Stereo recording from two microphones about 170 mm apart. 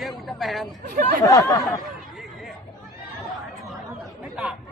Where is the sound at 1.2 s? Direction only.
20° left (ahead or behind).